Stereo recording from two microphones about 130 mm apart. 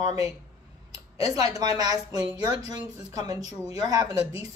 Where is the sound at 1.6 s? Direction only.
30° right (ahead or behind).